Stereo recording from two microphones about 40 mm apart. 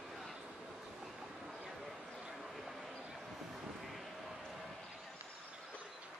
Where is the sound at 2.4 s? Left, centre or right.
Centre.